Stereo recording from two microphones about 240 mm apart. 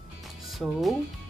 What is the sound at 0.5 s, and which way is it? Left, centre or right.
Speech, centre.